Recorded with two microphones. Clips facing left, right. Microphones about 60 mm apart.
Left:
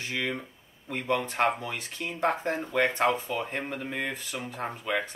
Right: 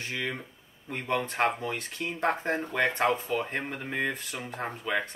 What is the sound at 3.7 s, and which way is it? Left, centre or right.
Speech, centre.